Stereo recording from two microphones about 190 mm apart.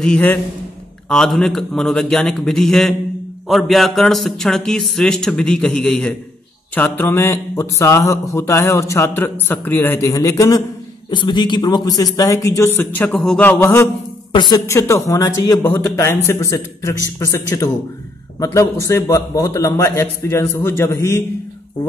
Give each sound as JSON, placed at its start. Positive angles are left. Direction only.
{"t": 0.0, "sound": "speech", "side_deg": 5}